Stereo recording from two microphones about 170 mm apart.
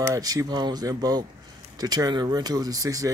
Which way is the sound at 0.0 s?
20° right (ahead or behind).